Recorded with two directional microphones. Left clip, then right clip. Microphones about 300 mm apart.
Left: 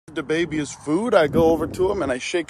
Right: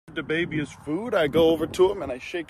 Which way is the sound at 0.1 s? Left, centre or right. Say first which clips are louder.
Left 4 dB; centre.